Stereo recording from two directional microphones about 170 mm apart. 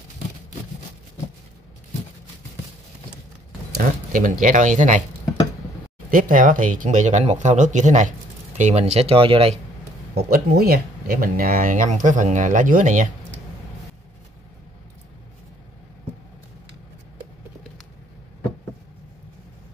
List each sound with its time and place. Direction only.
3.7 s speech: 50° right (ahead or behind)
6.0 s speech: 55° right (ahead or behind); by 9.6 s 35° right (ahead or behind)
10.1 s speech: 65° right (ahead or behind); by 13.1 s 50° right (ahead or behind)